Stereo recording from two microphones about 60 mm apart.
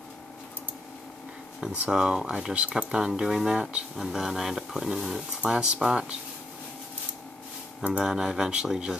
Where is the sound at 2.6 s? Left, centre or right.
Right.